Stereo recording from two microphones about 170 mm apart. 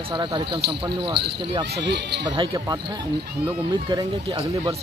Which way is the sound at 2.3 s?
30° right (ahead or behind).